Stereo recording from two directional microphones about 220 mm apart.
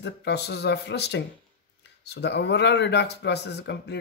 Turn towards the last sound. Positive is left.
turn(degrees=50)  # may be behind; listen again after turning